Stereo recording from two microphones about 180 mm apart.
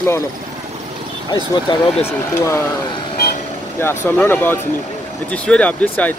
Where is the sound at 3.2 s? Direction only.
60° left (ahead or behind).